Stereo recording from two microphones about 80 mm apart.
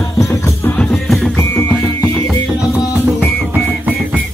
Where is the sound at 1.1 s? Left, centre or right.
Centre.